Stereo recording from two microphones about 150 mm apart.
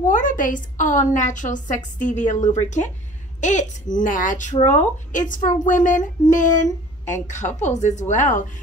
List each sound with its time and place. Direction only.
0.0 s a woman's voice: 60° left (ahead or behind)